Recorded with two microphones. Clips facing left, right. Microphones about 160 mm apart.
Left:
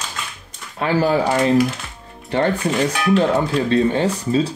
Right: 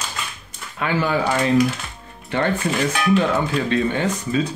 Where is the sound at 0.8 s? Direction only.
35° left (ahead or behind).